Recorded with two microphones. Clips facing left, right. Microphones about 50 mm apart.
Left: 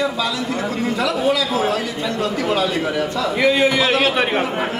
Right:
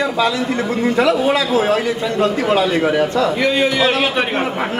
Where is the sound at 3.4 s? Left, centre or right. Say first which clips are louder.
Left 5 dB; centre.